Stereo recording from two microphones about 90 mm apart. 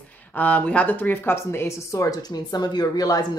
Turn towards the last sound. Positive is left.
turn(degrees=45)  # may be behind; listen again after turning